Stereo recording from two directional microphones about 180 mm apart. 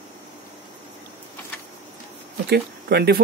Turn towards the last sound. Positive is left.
turn(degrees=-60)  # may be behind; listen again after turning